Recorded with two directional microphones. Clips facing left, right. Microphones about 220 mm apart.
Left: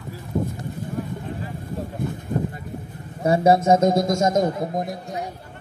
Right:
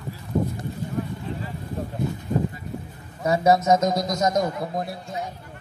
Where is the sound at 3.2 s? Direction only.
30° left (ahead or behind).